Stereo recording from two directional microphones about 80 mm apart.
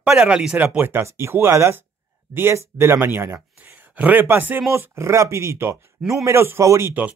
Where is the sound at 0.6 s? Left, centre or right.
Right.